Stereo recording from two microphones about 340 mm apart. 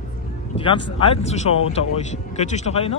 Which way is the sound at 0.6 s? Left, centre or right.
Centre.